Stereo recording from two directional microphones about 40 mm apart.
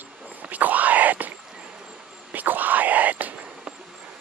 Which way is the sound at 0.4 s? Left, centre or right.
Right.